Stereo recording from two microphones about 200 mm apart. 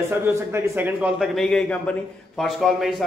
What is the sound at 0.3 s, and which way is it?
A man's voice, 10° right (ahead or behind).